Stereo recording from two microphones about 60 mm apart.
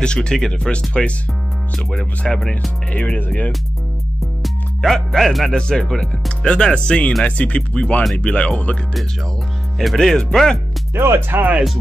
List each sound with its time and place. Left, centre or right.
0.0 s speech: centre
2.9 s speech: left
4.4 s music: centre
5.5 s speech: centre
9.8 s speech: centre
11.0 s speech: right